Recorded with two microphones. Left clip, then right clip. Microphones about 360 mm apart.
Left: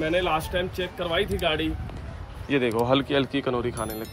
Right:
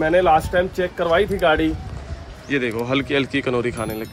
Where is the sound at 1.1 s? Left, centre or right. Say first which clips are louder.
Right 8 dB; centre.